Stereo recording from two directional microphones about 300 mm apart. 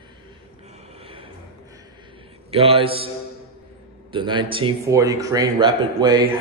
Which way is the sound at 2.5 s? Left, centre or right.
Centre.